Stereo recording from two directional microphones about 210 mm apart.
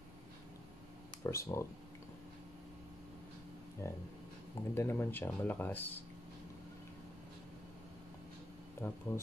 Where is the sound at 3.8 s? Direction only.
15° left (ahead or behind).